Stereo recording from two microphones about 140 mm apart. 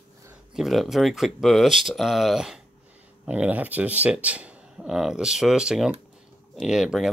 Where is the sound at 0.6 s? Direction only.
Centre (ahead or behind).